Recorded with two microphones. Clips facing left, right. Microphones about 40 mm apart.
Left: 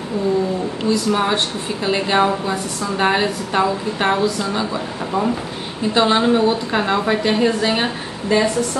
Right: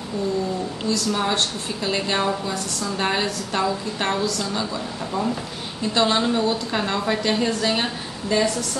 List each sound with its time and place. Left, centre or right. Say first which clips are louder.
0.8 s a woman's voice: left 5 dB; left